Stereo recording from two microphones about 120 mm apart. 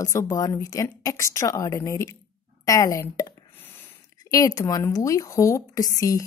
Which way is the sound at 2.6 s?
30° left (ahead or behind).